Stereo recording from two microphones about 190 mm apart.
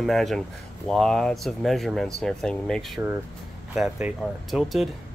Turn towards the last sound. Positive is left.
turn(degrees=0)  # may be behind; listen again after turning